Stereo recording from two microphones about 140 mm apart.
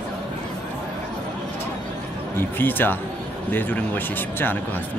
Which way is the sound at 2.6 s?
15° left (ahead or behind).